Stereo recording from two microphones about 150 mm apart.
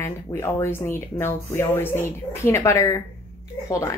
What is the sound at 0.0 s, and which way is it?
A woman's voice, 15° left (ahead or behind).